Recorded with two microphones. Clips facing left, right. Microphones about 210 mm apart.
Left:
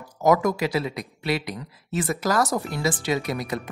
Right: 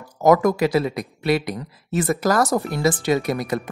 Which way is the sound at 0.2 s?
50° right (ahead or behind).